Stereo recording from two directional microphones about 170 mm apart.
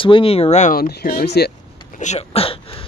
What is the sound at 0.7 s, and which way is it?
Speech, 60° left (ahead or behind).